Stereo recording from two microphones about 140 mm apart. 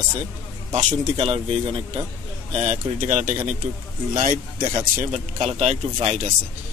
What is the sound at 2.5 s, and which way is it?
Speech, 55° right (ahead or behind).